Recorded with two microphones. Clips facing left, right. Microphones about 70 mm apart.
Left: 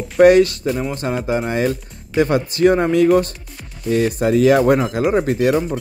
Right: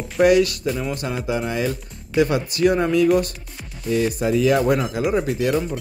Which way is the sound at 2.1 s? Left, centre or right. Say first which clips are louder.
Left 3 dB; left.